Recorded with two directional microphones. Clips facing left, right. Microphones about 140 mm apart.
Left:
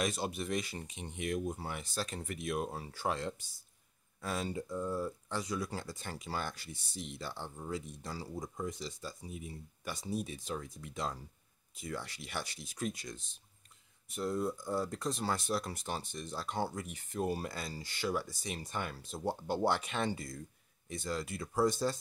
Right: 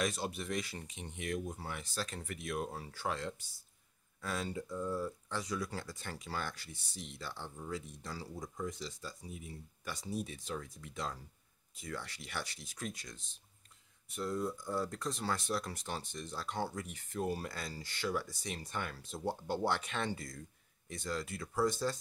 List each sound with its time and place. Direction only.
0.0 s speech: 15° left (ahead or behind)
14.1 s speech: 15° left (ahead or behind)